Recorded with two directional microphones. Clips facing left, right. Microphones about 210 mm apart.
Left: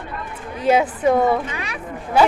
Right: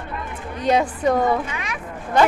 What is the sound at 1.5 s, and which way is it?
Speech, 35° left (ahead or behind).